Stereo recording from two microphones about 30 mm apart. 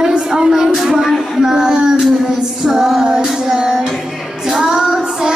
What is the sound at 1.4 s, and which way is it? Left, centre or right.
Child singing, centre.